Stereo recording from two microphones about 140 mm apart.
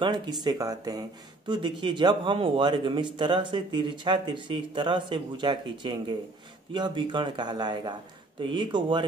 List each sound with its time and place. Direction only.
0.0 s a man's voice: 30° right (ahead or behind)